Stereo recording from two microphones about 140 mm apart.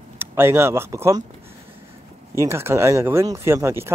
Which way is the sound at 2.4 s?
20° right (ahead or behind).